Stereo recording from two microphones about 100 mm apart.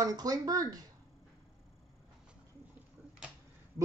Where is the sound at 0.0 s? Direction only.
40° right (ahead or behind).